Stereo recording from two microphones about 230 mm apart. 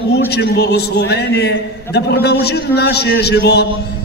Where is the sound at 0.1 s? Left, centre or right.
Left.